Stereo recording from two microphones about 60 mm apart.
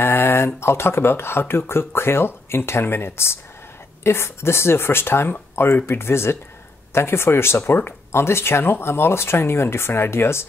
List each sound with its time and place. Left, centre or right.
0.0 s speech: left